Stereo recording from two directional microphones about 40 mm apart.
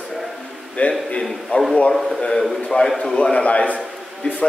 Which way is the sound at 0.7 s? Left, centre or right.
Left.